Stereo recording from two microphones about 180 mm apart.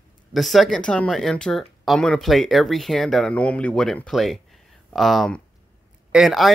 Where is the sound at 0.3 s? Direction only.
Centre (ahead or behind).